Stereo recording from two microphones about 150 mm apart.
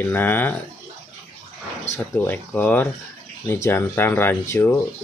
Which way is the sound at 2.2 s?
10° left (ahead or behind).